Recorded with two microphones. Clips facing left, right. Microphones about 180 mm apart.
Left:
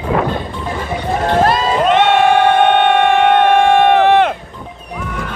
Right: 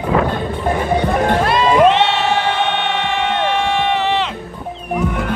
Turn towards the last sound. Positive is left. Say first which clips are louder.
# left 8 dB
turn(degrees=55)  # may be behind; listen again after turning